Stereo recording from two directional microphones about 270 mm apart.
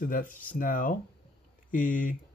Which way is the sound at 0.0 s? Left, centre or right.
Left.